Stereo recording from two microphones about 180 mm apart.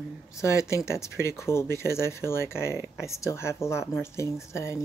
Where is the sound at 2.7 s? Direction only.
10° right (ahead or behind).